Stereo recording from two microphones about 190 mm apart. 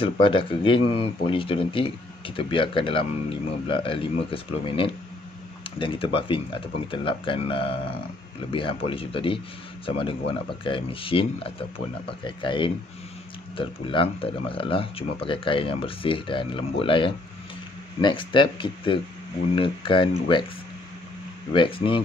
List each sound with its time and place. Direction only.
0.0 s speech: 25° left (ahead or behind)
21.5 s speech: 25° left (ahead or behind)